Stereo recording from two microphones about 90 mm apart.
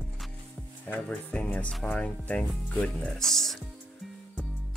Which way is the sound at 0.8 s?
20° left (ahead or behind).